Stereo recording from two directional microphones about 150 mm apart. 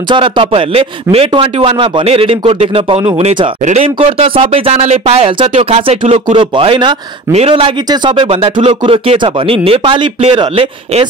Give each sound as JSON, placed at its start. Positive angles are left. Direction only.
{"t": 0.1, "sound": "speech", "side_deg": -35}